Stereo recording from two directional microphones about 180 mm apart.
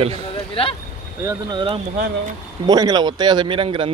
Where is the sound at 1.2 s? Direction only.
25° right (ahead or behind).